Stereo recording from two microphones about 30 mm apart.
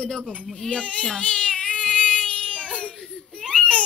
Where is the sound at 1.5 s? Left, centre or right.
Left.